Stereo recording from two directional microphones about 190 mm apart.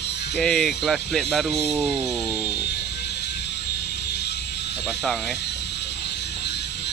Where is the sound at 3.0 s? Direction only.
60° left (ahead or behind).